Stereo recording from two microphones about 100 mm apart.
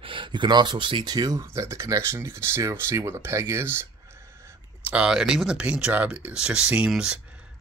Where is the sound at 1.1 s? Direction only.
40° right (ahead or behind).